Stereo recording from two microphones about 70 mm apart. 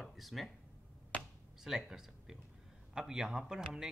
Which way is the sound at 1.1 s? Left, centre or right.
Centre.